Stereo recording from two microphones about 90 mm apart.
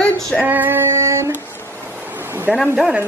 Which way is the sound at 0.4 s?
20° right (ahead or behind).